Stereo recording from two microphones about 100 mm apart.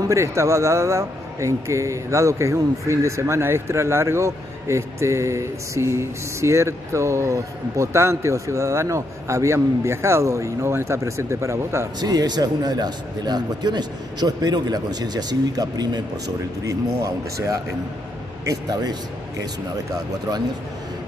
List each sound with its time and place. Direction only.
0.1 s speech: 30° right (ahead or behind)
12.0 s speech: 40° right (ahead or behind)